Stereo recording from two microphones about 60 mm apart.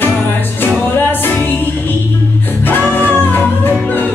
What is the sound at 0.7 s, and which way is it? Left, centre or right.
Music, left.